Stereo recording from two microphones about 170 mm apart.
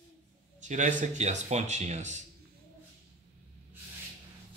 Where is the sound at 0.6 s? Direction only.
45° right (ahead or behind).